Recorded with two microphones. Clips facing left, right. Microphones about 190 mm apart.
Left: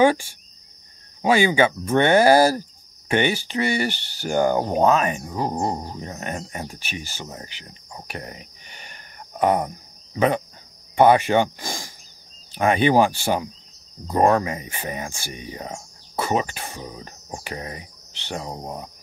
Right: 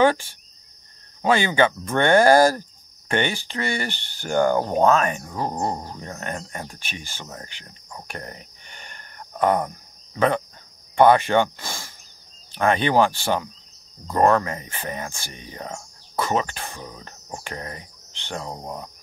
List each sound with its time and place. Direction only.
0.0 s speech: 10° left (ahead or behind)
8.1 s a sound: 5° left (ahead or behind)
10.1 s speech: 10° left (ahead or behind)